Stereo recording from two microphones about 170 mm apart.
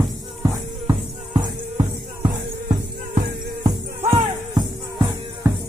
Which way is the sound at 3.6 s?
35° right (ahead or behind).